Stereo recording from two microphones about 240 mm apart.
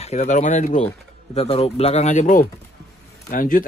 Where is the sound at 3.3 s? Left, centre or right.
Left.